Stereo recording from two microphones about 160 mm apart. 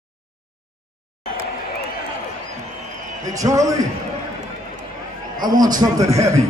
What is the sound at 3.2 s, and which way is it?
Speech, 20° right (ahead or behind).